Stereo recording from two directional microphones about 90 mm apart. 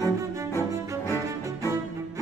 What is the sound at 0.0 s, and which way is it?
Music, 30° left (ahead or behind).